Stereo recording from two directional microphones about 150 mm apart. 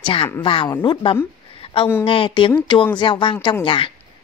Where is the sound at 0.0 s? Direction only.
35° left (ahead or behind).